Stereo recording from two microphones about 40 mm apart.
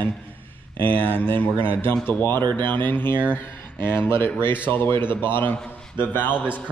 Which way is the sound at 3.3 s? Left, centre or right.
Left.